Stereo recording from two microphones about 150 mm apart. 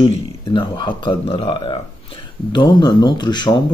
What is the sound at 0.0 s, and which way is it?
Speech, 30° left (ahead or behind).